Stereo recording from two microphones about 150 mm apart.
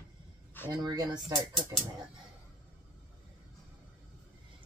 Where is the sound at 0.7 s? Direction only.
25° right (ahead or behind).